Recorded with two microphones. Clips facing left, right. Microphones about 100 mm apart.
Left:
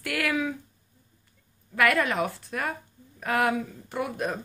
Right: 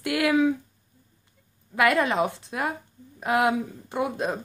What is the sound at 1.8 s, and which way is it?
Speech, 20° right (ahead or behind).